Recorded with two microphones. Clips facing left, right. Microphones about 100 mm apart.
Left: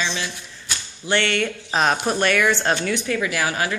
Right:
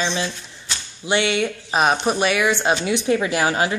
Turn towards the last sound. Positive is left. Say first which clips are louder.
# right 3 dB
turn(degrees=-25)  # may be behind; listen again after turning